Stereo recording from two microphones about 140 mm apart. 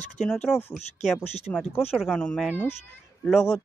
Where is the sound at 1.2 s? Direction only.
50° left (ahead or behind).